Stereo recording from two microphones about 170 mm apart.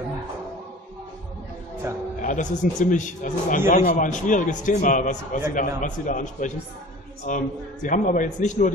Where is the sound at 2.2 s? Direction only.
50° left (ahead or behind).